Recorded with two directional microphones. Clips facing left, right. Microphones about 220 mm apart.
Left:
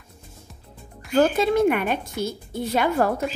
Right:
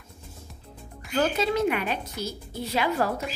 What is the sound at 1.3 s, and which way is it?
Speech, 50° left (ahead or behind).